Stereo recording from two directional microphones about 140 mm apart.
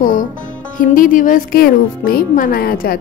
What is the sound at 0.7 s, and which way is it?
Speech, 70° left (ahead or behind).